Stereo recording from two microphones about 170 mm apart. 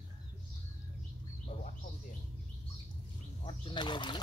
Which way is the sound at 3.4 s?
30° left (ahead or behind).